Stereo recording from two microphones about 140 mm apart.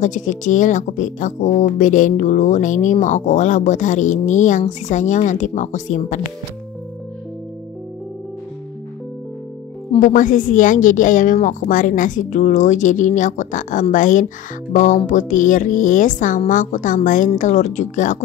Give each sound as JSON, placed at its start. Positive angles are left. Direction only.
{"t": 0.0, "sound": "speech", "side_deg": 65}
{"t": 9.9, "sound": "a woman's voice", "side_deg": 70}